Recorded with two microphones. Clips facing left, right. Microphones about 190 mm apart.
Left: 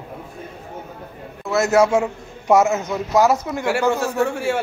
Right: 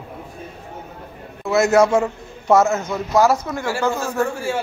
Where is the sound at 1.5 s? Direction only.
5° left (ahead or behind).